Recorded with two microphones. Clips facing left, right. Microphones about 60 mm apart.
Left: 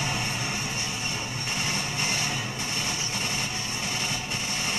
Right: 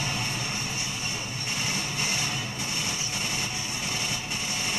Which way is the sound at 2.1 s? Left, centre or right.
Centre.